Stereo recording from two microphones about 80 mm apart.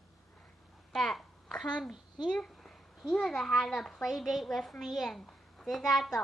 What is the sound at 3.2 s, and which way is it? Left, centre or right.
A woman's voice, centre.